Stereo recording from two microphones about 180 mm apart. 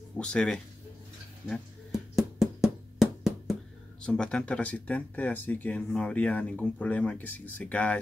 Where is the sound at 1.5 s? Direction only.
Centre (ahead or behind).